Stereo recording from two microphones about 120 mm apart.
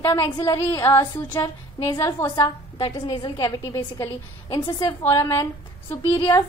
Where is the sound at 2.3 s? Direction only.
35° left (ahead or behind).